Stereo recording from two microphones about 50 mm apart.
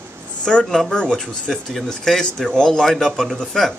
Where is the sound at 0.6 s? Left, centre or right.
Centre.